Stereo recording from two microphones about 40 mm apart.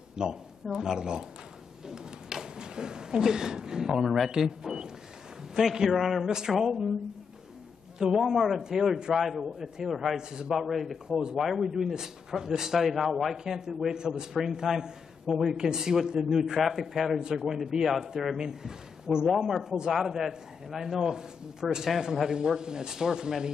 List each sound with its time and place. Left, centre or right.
0.1 s a man's voice: centre
4.4 s a sound: centre
5.5 s a man's voice: centre
6.2 s a man's voice: centre
8.2 s a man's voice: centre
13.4 s a man's voice: centre
19.2 s a man's voice: centre